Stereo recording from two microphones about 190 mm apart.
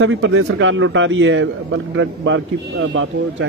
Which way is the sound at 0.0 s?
90° right.